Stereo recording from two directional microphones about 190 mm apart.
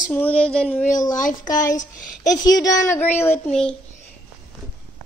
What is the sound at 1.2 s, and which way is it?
A child's voice, 45° left (ahead or behind).